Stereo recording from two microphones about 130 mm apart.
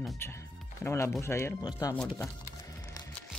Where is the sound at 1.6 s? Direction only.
30° left (ahead or behind).